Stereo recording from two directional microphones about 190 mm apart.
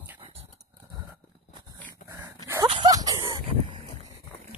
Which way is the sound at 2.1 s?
15° right (ahead or behind).